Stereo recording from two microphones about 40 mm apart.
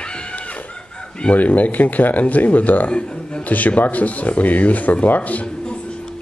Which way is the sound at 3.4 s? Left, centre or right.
Left.